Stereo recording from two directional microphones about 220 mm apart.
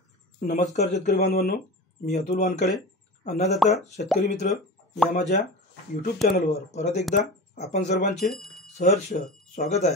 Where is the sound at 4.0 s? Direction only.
40° left (ahead or behind).